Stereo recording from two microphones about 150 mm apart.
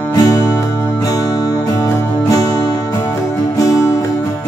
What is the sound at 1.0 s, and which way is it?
Music, 25° left (ahead or behind).